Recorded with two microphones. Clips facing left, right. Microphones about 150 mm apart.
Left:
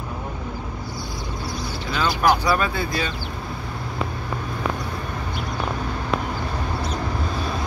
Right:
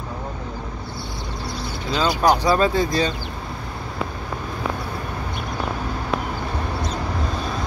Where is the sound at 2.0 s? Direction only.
20° right (ahead or behind); by 3.1 s 35° right (ahead or behind).